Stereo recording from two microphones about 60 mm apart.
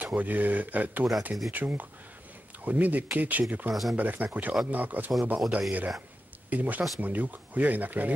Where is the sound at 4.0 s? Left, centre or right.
Right.